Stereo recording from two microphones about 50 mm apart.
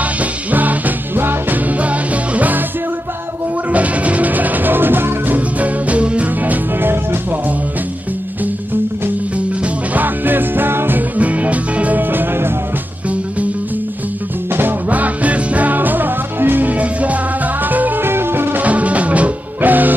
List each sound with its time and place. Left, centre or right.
0.0 s music: right
1.7 s music: right
3.7 s music: right
5.6 s music: right
9.9 s music: right
11.1 s music: right
14.5 s music: right
14.9 s music: right
18.0 s music: right
18.6 s music: right